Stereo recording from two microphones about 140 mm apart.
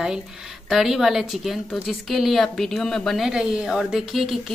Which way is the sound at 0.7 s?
Centre (ahead or behind).